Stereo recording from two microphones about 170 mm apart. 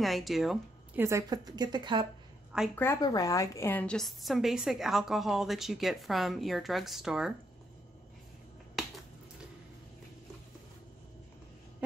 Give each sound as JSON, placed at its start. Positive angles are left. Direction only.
{"t": 0.0, "sound": "speech", "side_deg": 0}
{"t": 1.0, "sound": "speech", "side_deg": -20}
{"t": 2.7, "sound": "a woman's voice", "side_deg": 15}